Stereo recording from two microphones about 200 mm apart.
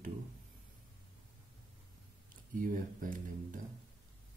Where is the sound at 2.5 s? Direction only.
40° right (ahead or behind).